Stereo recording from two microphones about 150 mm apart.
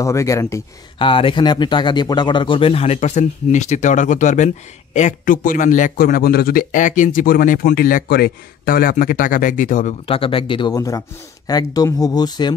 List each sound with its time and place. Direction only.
0.0 s speech: 20° left (ahead or behind)
0.9 s a man's voice: 35° left (ahead or behind); by 9.9 s 60° left (ahead or behind)
10.0 s speech: 40° left (ahead or behind)